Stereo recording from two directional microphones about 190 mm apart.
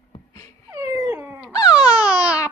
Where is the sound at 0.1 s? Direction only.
25° left (ahead or behind).